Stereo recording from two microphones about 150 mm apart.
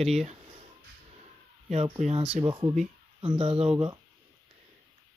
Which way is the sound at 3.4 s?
40° right (ahead or behind).